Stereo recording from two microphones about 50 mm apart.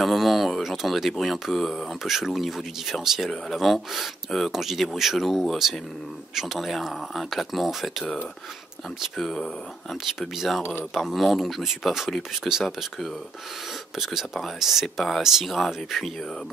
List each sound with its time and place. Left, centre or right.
0.0 s speech: centre
2.0 s speech: centre
9.1 s speech: centre
10.2 s speech: centre
10.6 s speech: left
11.0 s speech: centre
13.9 s speech: centre